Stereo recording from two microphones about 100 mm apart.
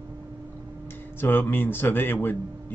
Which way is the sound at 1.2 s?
20° left (ahead or behind).